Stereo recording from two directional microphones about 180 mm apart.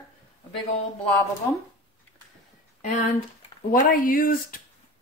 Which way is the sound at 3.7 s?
50° left (ahead or behind).